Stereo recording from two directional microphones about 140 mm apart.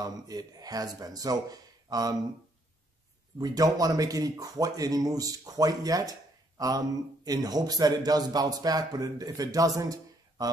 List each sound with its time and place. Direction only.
0.0 s a man's voice: 25° right (ahead or behind)
3.3 s a man's voice: 25° right (ahead or behind)
7.2 s a man's voice: 25° right (ahead or behind)